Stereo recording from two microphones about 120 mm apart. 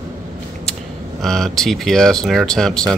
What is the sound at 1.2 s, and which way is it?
Speech, 5° left (ahead or behind).